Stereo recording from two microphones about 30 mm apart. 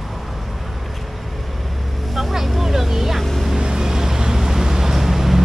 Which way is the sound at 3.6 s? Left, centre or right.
Right.